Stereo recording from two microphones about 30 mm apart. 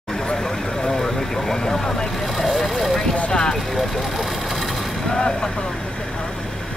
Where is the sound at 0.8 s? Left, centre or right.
Centre.